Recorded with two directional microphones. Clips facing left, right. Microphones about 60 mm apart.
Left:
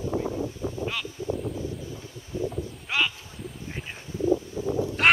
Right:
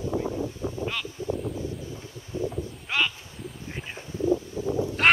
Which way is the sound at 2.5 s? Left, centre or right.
Centre.